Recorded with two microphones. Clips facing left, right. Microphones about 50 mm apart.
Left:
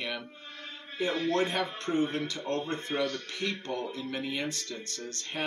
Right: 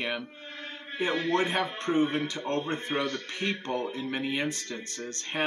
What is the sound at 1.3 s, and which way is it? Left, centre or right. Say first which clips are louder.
Speech: right 1 dB; centre.